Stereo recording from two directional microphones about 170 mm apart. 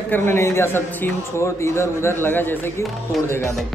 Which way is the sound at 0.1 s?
15° left (ahead or behind).